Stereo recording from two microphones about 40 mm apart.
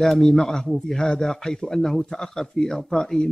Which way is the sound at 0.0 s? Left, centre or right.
Centre.